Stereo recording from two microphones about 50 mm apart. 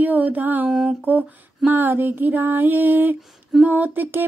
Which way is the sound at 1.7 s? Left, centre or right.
Right.